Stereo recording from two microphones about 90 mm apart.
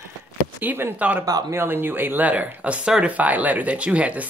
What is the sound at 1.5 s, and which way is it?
Speech, 25° right (ahead or behind).